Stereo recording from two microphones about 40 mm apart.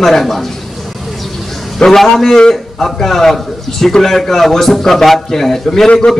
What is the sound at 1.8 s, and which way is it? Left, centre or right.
A man's voice, centre.